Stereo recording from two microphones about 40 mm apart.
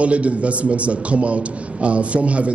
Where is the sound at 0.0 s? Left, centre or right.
Right.